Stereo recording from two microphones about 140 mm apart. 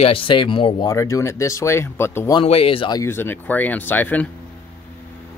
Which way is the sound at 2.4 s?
45° left (ahead or behind).